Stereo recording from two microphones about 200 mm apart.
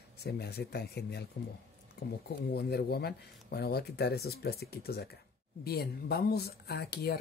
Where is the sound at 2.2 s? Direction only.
55° left (ahead or behind).